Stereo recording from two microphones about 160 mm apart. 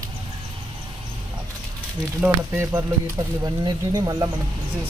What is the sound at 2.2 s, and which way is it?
Speech, 15° right (ahead or behind).